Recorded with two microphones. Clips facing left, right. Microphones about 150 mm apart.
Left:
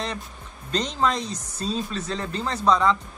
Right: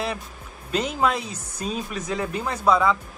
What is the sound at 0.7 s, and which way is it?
Speech, 10° right (ahead or behind).